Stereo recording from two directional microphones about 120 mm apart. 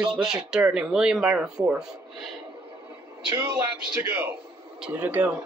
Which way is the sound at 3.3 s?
20° right (ahead or behind).